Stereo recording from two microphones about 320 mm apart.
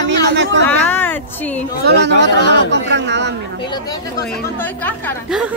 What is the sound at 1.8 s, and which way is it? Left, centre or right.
Speech, right.